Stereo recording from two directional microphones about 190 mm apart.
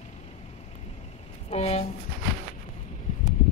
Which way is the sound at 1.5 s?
35° left (ahead or behind).